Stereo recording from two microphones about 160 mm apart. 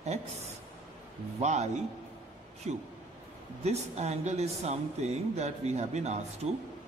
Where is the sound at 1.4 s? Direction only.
45° right (ahead or behind).